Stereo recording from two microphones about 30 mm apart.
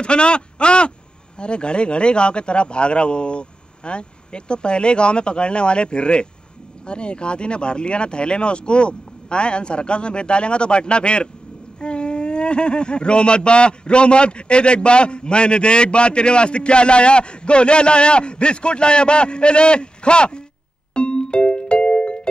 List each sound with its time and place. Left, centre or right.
0.0 s speech: left
20.9 s music: left